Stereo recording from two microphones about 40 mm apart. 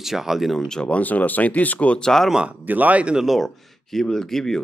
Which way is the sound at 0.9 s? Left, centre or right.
Left.